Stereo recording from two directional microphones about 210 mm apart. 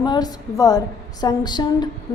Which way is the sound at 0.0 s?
20° left (ahead or behind).